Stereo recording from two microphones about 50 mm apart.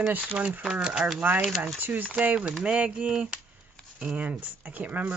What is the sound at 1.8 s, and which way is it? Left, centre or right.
Speech, right.